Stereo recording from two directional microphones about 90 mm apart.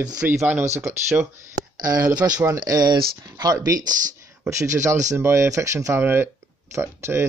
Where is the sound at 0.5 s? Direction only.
20° right (ahead or behind).